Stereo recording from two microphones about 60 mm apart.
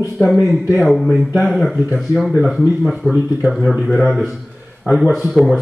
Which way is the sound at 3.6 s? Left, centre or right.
Centre.